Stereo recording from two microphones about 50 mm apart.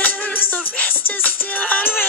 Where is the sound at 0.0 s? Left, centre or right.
Left.